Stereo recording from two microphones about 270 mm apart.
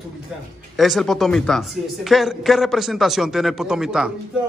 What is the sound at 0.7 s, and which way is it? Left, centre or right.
A woman's voice, centre.